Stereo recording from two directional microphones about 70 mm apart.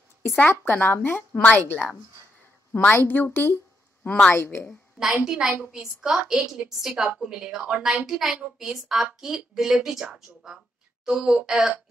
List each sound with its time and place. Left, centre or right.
0.5 s a woman's voice: left
4.0 s speech: centre
4.4 s a woman's voice: left
5.1 s a woman's voice: centre